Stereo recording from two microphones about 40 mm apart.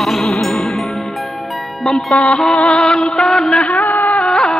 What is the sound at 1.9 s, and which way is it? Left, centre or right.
Music, centre.